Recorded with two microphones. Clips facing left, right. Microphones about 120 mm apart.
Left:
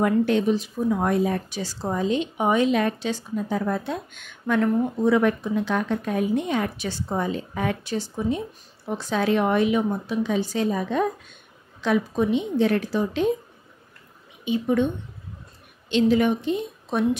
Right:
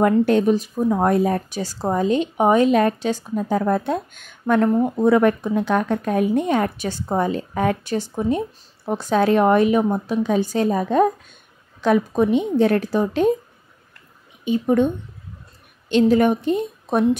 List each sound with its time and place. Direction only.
0.0 s speech: 45° right (ahead or behind)
14.4 s speech: 45° right (ahead or behind)
15.9 s speech: 50° right (ahead or behind)